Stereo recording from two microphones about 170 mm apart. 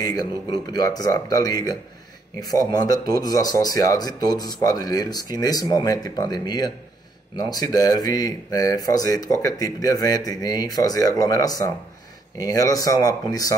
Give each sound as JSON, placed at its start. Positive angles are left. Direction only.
{"t": 0.0, "sound": "speech", "side_deg": 20}